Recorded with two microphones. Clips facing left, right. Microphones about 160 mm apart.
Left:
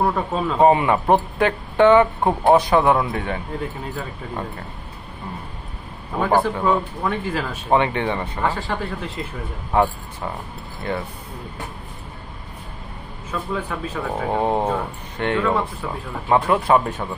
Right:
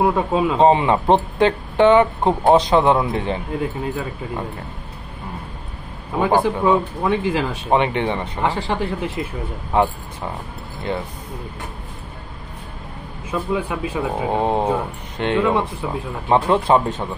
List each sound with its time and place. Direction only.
0.0 s speech: 10° right (ahead or behind)
0.6 s speech: 25° right (ahead or behind)
6.1 s speech: 15° right (ahead or behind)
13.3 s speech: 15° right (ahead or behind)